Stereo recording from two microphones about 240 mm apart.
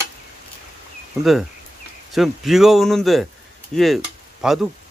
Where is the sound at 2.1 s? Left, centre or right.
Centre.